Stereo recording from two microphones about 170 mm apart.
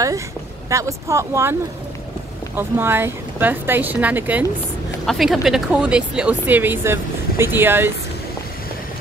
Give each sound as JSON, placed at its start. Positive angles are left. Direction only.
{"t": 0.7, "sound": "speech", "side_deg": -20}